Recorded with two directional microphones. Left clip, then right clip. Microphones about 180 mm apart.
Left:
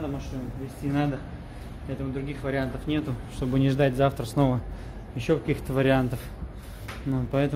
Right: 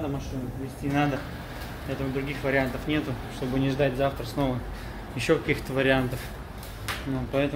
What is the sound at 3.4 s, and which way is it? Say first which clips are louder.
Speech: left 2 dB; 50° left (ahead or behind).